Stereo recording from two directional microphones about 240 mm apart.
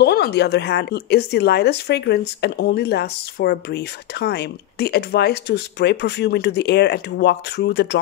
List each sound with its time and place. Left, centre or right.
0.0 s speech: left